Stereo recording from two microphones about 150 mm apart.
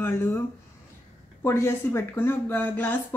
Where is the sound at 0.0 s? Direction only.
15° left (ahead or behind).